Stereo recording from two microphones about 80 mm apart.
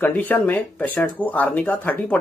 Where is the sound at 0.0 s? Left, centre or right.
Left.